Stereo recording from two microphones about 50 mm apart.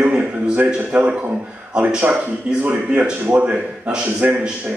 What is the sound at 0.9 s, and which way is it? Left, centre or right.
A man's voice, right.